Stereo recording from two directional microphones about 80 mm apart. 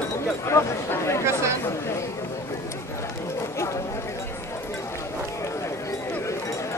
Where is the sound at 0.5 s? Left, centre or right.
Left.